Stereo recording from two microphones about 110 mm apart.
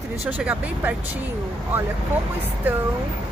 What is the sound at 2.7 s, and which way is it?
Speech, 15° right (ahead or behind).